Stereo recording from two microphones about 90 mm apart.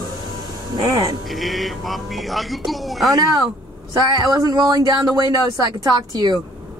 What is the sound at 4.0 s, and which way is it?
Speech, 50° right (ahead or behind).